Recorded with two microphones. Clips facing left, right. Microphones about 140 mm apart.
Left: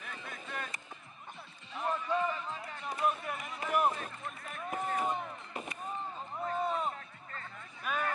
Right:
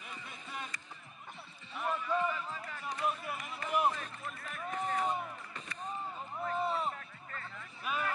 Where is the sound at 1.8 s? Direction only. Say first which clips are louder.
Left 1 dB; 35° left (ahead or behind).